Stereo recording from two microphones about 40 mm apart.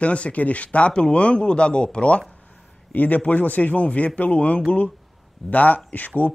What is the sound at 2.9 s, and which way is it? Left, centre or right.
A man's voice, left.